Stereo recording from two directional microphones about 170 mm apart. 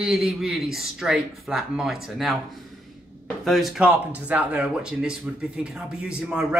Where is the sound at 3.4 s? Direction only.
Centre (ahead or behind).